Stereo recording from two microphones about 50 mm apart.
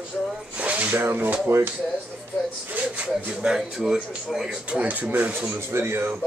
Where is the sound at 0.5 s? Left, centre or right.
Right.